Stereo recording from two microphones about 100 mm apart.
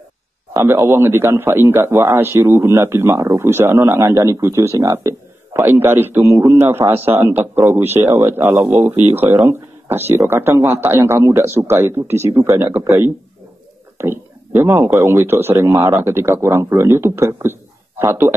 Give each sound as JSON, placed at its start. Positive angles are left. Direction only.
{"t": 0.5, "sound": "a man's voice", "side_deg": -25}